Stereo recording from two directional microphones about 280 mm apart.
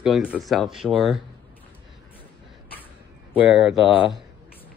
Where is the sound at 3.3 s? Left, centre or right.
Centre.